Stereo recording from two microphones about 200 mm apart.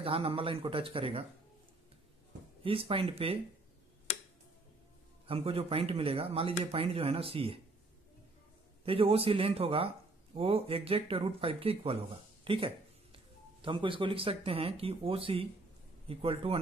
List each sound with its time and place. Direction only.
0.0 s speech: 30° right (ahead or behind)
2.6 s speech: 25° right (ahead or behind)
5.2 s speech: 30° right (ahead or behind)
8.8 s speech: 30° right (ahead or behind)